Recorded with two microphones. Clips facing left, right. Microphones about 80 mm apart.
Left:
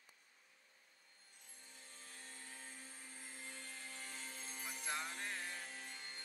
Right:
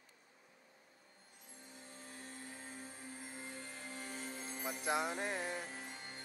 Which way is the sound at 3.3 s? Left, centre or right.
Right.